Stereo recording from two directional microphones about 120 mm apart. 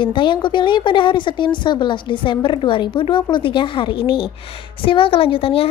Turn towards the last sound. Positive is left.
turn(degrees=50)  # may be behind; listen again after turning